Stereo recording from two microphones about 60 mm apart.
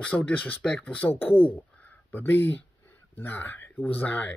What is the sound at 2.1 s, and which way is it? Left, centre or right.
Speech, left.